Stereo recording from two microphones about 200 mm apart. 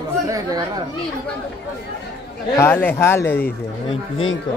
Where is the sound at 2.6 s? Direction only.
10° left (ahead or behind).